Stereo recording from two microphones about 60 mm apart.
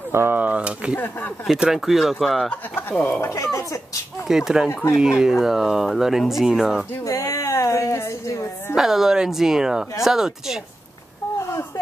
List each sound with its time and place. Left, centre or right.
0.1 s speech: right
0.4 s speech: right
0.9 s speech: left
1.6 s speech: centre
3.2 s speech: left
4.3 s speech: centre
7.1 s a sound: left
8.7 s speech: centre
11.3 s a sound: left